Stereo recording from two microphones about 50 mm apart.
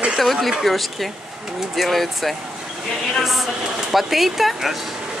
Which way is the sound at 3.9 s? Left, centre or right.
Centre.